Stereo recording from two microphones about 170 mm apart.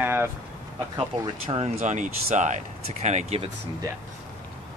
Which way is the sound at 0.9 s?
30° right (ahead or behind).